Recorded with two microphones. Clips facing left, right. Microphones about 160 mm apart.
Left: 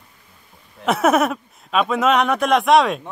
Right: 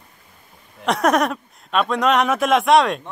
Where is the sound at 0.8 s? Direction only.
5° left (ahead or behind).